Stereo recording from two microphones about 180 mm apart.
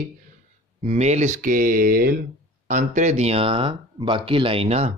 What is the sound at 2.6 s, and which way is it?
Speech, 45° right (ahead or behind).